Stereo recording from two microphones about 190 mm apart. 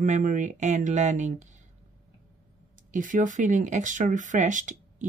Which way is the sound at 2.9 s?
45° right (ahead or behind).